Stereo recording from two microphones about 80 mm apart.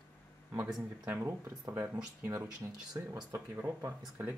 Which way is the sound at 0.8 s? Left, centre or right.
Right.